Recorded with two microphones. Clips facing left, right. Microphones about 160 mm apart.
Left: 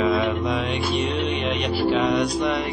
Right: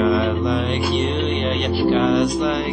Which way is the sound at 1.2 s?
10° left (ahead or behind).